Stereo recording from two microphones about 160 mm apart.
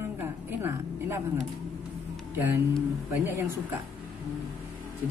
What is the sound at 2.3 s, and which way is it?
Speech, 20° right (ahead or behind).